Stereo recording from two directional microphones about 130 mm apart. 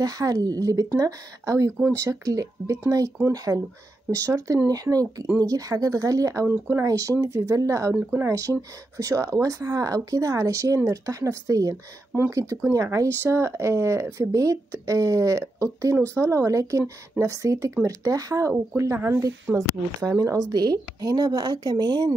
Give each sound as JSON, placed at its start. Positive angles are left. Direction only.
{"t": 0.0, "sound": "a woman's voice", "side_deg": -30}